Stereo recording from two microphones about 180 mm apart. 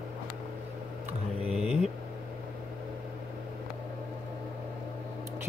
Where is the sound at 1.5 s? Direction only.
5° right (ahead or behind).